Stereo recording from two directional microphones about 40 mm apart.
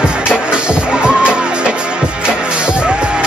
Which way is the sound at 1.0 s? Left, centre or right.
Right.